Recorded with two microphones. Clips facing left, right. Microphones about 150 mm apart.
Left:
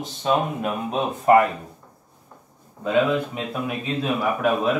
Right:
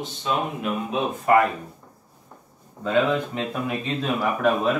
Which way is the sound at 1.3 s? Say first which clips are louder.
Left 3 dB; 25° left (ahead or behind).